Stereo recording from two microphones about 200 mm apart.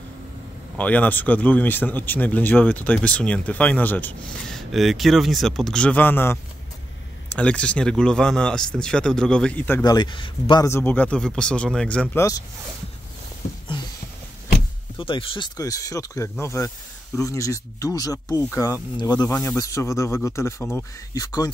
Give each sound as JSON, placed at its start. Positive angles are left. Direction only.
{"t": 0.7, "sound": "speech", "side_deg": 5}
{"t": 9.9, "sound": "speech", "side_deg": 25}
{"t": 15.0, "sound": "speech", "side_deg": 25}